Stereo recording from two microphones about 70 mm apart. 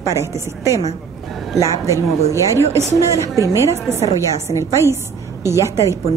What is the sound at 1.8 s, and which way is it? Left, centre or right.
Speech, right.